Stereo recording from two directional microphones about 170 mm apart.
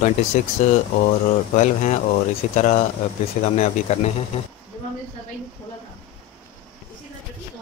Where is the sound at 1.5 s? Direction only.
45° left (ahead or behind).